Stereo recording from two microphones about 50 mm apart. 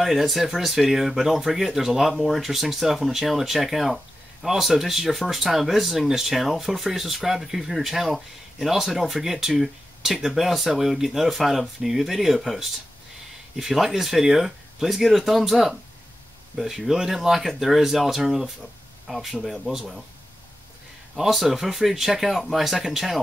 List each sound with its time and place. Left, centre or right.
0.0 s speech: centre
21.2 s speech: centre